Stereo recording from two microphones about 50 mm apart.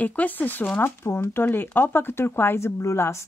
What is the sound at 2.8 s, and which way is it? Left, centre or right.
Speech, left.